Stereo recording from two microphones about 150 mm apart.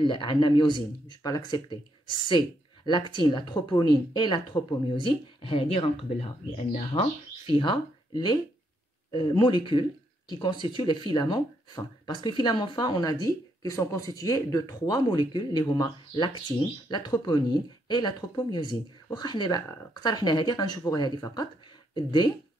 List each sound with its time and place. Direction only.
0.0 s speech: 30° left (ahead or behind)
9.1 s speech: 35° left (ahead or behind)